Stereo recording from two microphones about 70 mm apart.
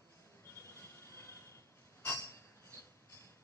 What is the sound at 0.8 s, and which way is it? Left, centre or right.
Vehicle, left.